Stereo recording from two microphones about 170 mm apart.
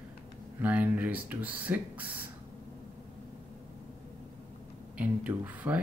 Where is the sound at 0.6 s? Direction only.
10° right (ahead or behind).